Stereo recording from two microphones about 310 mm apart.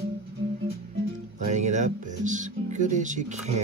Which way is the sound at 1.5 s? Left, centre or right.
Right.